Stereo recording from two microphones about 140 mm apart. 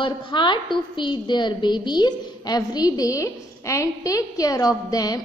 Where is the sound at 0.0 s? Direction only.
35° left (ahead or behind).